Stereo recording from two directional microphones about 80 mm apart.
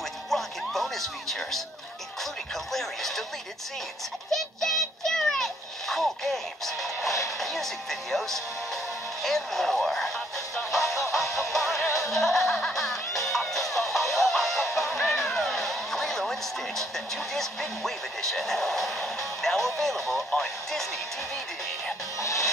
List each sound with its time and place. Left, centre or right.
0.3 s music: centre
2.5 s speech: centre
4.3 s child singing: centre
7.2 s speech: centre
11.9 s music: centre
22.2 s music: left